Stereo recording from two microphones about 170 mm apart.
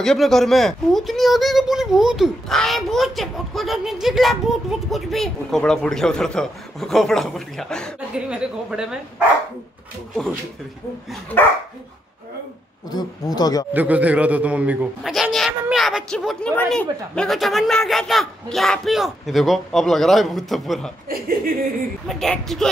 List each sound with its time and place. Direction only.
0.0 s speech: 5° left (ahead or behind)
11.3 s dog: 15° left (ahead or behind)
12.9 s speech: 25° left (ahead or behind)
13.7 s a man's voice: 10° right (ahead or behind)
22.0 s speech: centre (ahead or behind)